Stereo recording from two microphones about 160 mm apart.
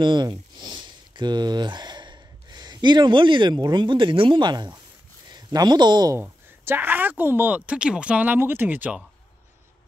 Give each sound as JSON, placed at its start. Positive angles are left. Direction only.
{"t": 0.0, "sound": "speech", "side_deg": -30}
{"t": 6.2, "sound": "speech", "side_deg": -15}